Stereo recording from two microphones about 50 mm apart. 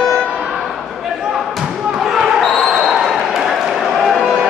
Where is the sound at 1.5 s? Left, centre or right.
Centre.